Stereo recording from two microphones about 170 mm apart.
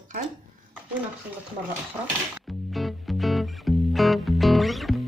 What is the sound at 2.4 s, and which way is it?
Music, centre (ahead or behind).